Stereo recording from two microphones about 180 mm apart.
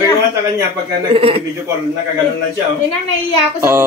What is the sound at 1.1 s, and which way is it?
Speech, 30° right (ahead or behind).